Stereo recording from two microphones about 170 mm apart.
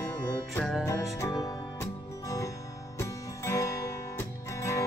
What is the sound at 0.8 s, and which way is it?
Music, 15° left (ahead or behind).